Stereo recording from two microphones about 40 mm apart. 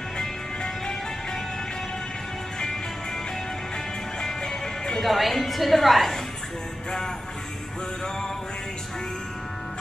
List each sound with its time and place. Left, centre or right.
4.4 s music: centre
5.0 s a woman's voice: centre